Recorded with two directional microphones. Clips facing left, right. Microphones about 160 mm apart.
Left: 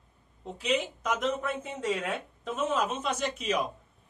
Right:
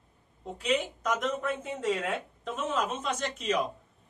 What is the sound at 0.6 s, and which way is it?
Speech, 5° left (ahead or behind).